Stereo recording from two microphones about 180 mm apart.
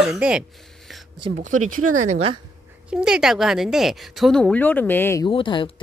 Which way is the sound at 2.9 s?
5° right (ahead or behind).